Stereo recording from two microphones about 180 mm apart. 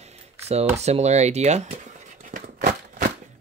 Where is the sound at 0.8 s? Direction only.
35° right (ahead or behind).